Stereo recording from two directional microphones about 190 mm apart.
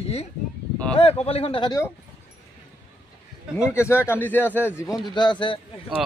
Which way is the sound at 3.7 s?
15° left (ahead or behind).